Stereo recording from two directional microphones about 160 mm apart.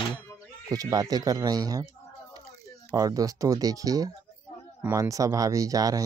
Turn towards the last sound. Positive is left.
turn(degrees=-20)  # may be behind; listen again after turning